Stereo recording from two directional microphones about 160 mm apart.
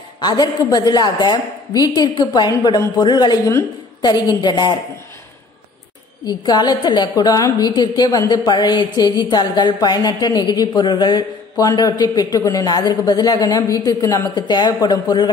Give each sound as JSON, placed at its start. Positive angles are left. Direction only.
{"t": 0.2, "sound": "a woman's voice", "side_deg": 25}
{"t": 6.2, "sound": "a woman's voice", "side_deg": 25}